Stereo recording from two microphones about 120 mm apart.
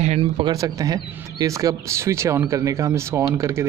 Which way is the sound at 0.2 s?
45° right (ahead or behind).